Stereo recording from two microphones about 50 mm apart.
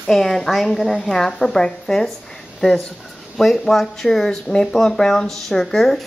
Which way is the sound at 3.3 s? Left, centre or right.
Centre.